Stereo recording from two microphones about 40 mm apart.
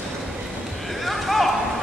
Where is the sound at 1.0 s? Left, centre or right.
Centre.